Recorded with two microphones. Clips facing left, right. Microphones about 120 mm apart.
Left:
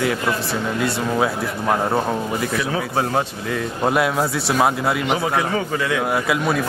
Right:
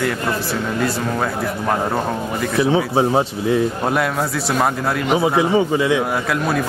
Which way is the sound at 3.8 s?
5° left (ahead or behind).